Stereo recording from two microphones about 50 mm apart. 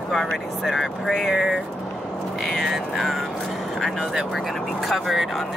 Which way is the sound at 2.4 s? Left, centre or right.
Centre.